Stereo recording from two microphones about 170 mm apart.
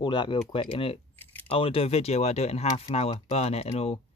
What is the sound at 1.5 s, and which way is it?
Speech, 35° left (ahead or behind).